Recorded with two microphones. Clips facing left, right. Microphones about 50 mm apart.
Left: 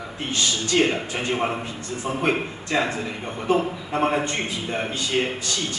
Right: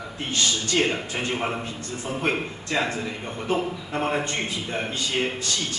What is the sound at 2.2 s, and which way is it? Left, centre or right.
A man's voice, centre.